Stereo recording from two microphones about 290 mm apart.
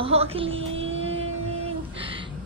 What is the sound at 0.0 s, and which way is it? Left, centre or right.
Music, right.